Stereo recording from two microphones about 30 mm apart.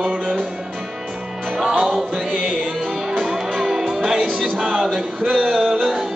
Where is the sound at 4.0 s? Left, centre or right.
Centre.